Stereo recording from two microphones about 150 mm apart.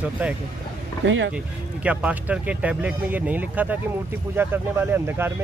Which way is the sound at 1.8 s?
10° right (ahead or behind).